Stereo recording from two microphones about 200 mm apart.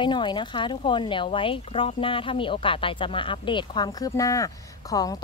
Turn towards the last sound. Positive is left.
turn(degrees=20)  # may be behind; listen again after turning